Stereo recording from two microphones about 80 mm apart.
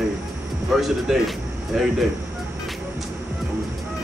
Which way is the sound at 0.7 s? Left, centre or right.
Centre.